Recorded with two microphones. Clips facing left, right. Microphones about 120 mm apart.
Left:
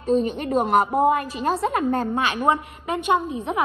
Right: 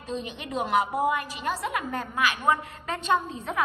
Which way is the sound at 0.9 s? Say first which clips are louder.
Left 7 dB; 30° left (ahead or behind).